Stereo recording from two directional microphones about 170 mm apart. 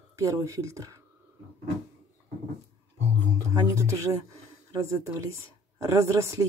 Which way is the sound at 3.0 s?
15° right (ahead or behind).